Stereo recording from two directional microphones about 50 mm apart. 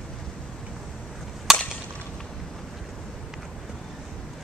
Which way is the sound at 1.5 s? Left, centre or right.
Centre.